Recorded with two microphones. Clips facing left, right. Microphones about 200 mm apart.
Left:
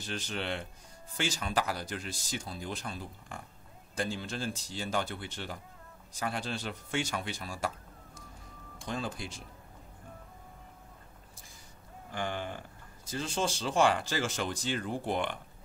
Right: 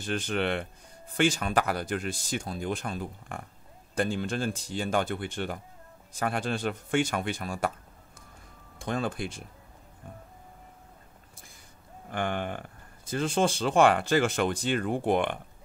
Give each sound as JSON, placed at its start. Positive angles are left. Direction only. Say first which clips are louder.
{"t": 0.0, "sound": "speech", "louder": "right 8 dB", "side_deg": -55}
{"t": 12.1, "sound": "speech", "louder": "right 5 dB", "side_deg": -60}